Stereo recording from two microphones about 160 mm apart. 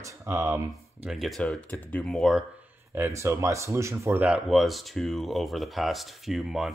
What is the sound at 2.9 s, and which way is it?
Speech, 20° right (ahead or behind).